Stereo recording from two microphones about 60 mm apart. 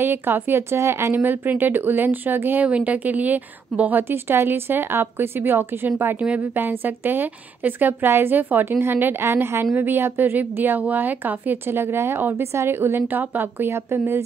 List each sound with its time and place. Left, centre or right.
0.0 s a woman's voice: right
1.1 s a woman's voice: right
2.6 s a woman's voice: right
4.1 s a woman's voice: right